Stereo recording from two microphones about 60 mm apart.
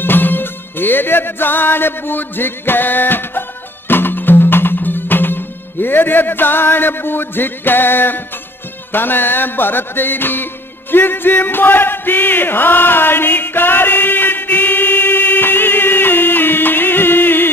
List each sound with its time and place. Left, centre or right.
0.0 s music: left